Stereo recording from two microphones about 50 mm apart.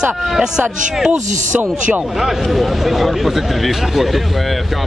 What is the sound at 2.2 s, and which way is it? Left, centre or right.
Speech, centre.